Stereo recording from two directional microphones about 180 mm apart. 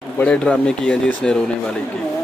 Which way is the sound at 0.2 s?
5° left (ahead or behind).